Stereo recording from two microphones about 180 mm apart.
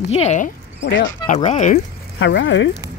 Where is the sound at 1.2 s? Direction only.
40° left (ahead or behind).